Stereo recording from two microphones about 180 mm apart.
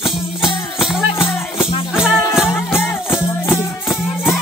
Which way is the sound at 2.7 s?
10° left (ahead or behind).